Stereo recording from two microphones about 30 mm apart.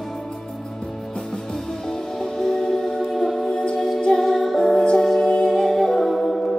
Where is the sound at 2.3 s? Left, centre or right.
Centre.